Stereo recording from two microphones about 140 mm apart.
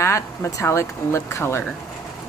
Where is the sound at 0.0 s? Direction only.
20° left (ahead or behind).